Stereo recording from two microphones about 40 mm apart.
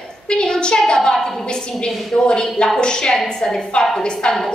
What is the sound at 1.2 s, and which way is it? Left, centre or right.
A woman's voice, left.